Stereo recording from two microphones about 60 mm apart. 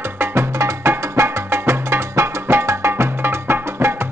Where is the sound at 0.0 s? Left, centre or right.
Right.